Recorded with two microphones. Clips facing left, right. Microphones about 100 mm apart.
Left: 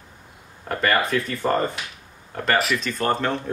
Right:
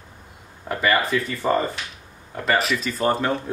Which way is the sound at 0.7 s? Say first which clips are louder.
Even; centre (ahead or behind).